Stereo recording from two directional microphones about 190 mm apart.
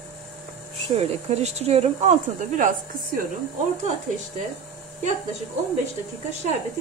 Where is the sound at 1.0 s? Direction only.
35° right (ahead or behind).